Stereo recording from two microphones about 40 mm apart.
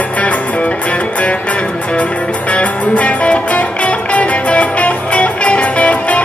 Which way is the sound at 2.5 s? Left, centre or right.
Left.